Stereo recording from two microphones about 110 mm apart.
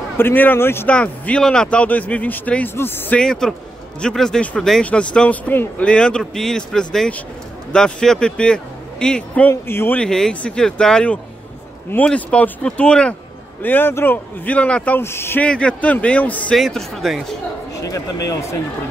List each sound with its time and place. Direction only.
0.2 s speech: 20° left (ahead or behind)
3.2 s speech: 5° left (ahead or behind); by 9.9 s 20° left (ahead or behind)
9.9 s speech: 5° left (ahead or behind); by 15.4 s 20° left (ahead or behind)
15.4 s speech: 10° left (ahead or behind)
16.5 s speech: centre (ahead or behind)
17.8 s speech: 30° left (ahead or behind)